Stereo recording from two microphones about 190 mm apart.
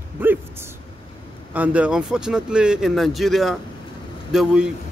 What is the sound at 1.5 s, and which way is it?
Speech, 5° right (ahead or behind).